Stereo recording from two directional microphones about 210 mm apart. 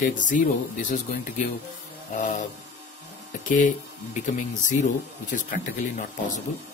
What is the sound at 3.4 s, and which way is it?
Speech, 35° left (ahead or behind).